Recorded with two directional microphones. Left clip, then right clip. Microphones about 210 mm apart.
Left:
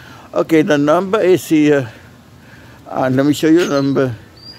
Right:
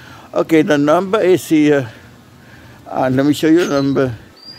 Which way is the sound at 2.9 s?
Centre (ahead or behind).